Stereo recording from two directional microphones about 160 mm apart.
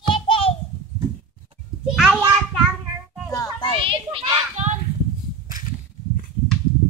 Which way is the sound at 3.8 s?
35° right (ahead or behind).